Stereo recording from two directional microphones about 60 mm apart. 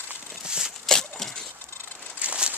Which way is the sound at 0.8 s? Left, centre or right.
Centre.